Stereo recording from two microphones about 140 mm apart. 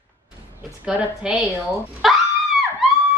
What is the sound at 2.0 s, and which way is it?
Screaming, centre (ahead or behind).